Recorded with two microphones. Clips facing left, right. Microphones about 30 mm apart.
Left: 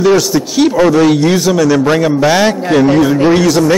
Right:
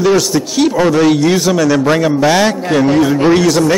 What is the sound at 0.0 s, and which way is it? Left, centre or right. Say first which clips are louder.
A man's voice: left 2 dB; centre.